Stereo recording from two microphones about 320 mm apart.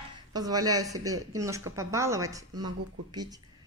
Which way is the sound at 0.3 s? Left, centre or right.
Centre.